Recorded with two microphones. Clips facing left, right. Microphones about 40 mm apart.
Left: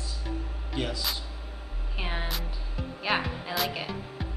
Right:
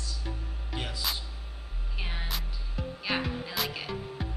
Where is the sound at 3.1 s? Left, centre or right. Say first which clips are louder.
Left 3 dB; centre.